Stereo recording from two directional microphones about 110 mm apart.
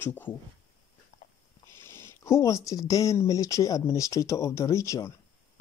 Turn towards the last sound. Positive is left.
turn(degrees=30)  # may be behind; listen again after turning